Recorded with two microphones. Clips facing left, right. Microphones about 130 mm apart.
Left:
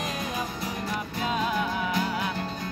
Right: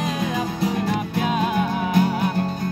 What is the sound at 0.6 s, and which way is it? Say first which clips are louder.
Music: right 9 dB; 75° right (ahead or behind).